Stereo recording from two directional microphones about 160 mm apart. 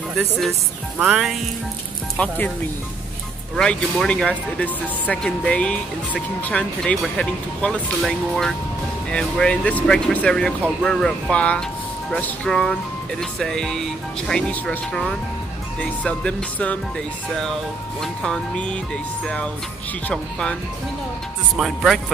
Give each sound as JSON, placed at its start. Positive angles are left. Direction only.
{"t": 0.5, "sound": "speech", "side_deg": -10}
{"t": 2.1, "sound": "speech", "side_deg": 10}
{"t": 3.5, "sound": "speech", "side_deg": 5}
{"t": 21.5, "sound": "speech", "side_deg": 0}